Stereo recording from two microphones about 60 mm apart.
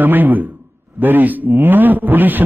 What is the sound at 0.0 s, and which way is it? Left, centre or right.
A man's voice, right.